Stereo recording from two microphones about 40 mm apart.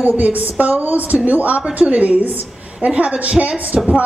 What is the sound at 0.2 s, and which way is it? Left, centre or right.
A woman's voice, right.